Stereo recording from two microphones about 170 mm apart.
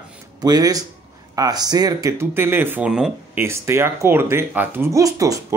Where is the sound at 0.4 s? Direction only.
20° right (ahead or behind).